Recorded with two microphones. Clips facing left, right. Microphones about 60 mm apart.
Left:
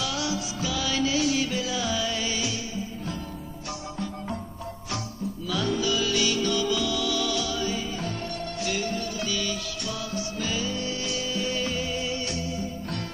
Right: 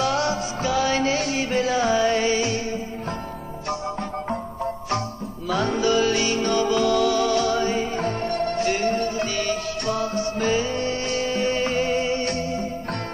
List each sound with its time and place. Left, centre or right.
0.0 s music: right
5.5 s music: right